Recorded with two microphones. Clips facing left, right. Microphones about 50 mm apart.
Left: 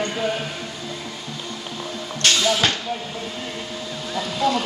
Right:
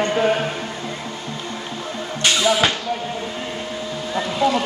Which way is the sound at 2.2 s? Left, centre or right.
Centre.